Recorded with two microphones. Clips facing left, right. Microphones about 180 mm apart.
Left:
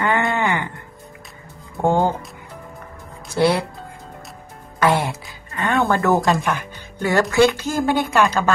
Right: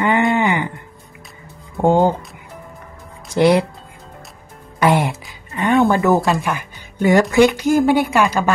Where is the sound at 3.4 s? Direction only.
15° right (ahead or behind).